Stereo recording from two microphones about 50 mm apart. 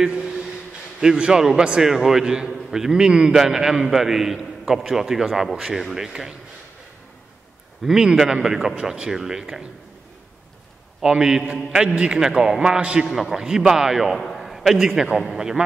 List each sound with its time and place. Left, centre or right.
0.0 s a sound: centre
1.0 s a man's voice: centre
7.8 s a man's voice: centre
11.0 s a man's voice: centre
13.1 s a man's voice: centre
14.2 s a sound: centre
15.0 s a man's voice: centre